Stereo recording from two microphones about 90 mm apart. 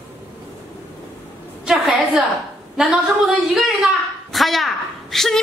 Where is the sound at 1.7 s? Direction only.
5° right (ahead or behind).